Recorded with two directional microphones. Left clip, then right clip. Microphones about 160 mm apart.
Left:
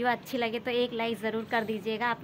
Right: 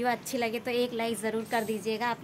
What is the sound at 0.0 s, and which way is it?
A woman's voice, 15° right (ahead or behind).